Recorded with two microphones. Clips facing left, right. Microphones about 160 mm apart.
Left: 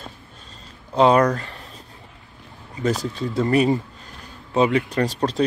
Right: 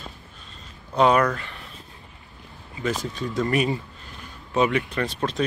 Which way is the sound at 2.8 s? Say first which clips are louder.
Left 4 dB; 35° left (ahead or behind).